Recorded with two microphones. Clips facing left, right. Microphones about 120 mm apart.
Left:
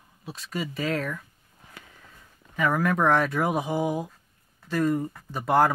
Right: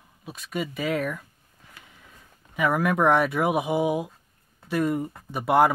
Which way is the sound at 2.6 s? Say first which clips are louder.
Right 1 dB; 10° right (ahead or behind).